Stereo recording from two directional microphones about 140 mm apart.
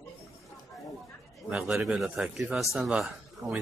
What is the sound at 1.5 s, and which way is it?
A man's voice, 5° right (ahead or behind).